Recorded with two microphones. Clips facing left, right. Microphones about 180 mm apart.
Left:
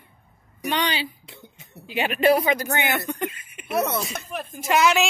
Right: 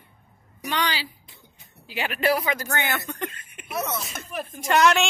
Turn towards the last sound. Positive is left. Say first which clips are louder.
# even
turn(degrees=5)  # may be behind; listen again after turning